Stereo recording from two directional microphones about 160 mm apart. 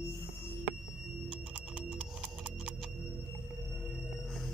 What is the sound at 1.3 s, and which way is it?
Music, 10° right (ahead or behind).